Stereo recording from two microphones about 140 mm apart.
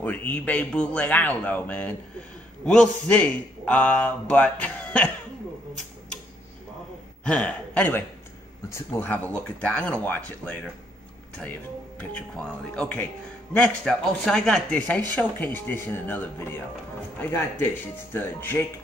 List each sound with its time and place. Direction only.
0.0 s speech: 10° left (ahead or behind)
7.2 s a man's voice: 10° left (ahead or behind)
12.0 s a man's voice: 5° left (ahead or behind)